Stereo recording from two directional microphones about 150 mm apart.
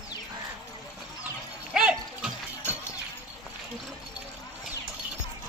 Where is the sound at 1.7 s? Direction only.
5° right (ahead or behind).